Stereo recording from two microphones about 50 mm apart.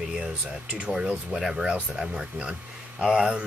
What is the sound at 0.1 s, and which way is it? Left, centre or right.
Speech, centre.